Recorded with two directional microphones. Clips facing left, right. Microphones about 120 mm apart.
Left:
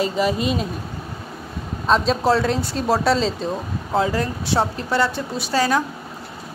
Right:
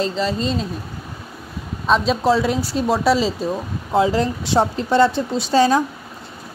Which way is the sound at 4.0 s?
20° right (ahead or behind).